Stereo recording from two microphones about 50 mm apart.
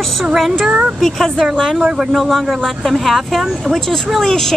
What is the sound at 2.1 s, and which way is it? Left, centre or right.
Speech, centre.